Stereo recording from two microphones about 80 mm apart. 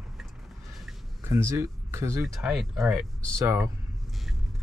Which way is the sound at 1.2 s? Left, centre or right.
Right.